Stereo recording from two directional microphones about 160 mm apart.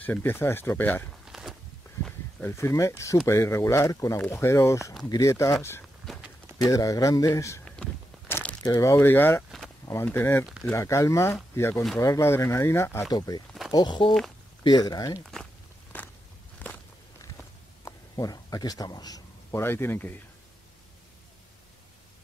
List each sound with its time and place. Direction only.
0.0 s speech: 10° left (ahead or behind)
1.2 s walk: centre (ahead or behind)
2.4 s a man's voice: 15° left (ahead or behind)
6.1 s walk: centre (ahead or behind)
6.6 s a man's voice: 20° left (ahead or behind)
7.6 s a sound: 5° left (ahead or behind)
8.6 s speech: 15° left (ahead or behind)
10.4 s speech: centre (ahead or behind)
10.7 s a man's voice: 20° left (ahead or behind)
15.9 s walk: 10° left (ahead or behind)
17.8 s speech: 20° left (ahead or behind)